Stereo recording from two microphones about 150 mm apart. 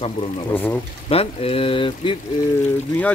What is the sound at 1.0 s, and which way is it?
Speech, 40° left (ahead or behind).